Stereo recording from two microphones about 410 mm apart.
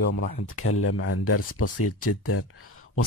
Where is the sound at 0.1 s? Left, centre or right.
Left.